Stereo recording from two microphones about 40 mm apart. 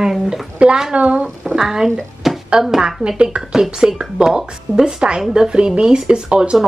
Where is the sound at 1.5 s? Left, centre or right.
Centre.